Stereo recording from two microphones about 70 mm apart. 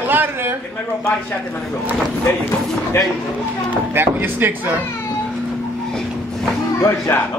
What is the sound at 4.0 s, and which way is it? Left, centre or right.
Speech, right.